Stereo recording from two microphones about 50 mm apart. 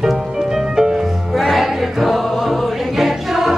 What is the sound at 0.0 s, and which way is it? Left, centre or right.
Music, centre.